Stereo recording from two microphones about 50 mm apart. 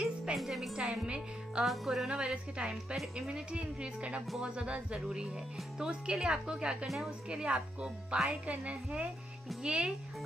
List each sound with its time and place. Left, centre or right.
0.0 s music: centre
0.4 s speech: centre
1.0 s a woman's voice: centre
1.7 s music: centre
2.0 s a woman's voice: centre